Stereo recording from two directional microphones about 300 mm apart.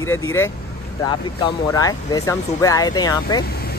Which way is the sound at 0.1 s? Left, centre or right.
Centre.